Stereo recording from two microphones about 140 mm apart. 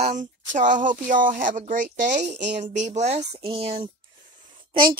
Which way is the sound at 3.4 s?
45° right (ahead or behind).